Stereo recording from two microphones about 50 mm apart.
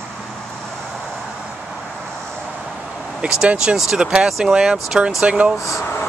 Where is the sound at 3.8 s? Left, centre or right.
Centre.